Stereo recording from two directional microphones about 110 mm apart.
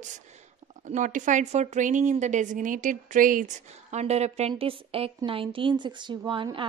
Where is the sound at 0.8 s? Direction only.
90° right.